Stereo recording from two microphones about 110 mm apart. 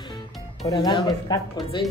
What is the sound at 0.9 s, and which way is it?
Speech, 45° left (ahead or behind).